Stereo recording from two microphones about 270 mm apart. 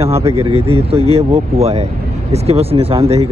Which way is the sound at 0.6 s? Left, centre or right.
Right.